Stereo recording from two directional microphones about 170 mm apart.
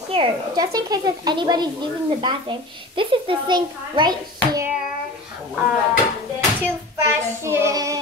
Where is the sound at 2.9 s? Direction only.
30° right (ahead or behind).